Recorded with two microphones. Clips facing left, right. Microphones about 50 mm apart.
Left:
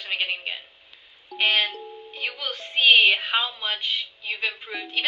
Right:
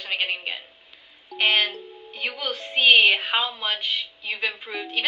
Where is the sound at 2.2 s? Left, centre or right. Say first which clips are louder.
Right 2 dB; right; by 3.4 s centre.